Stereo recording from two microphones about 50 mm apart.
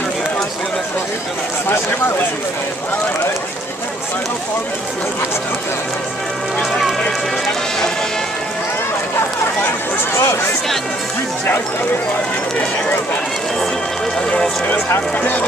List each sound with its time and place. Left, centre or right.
6.9 s run: centre
10.1 s speech: left
15.1 s speech: left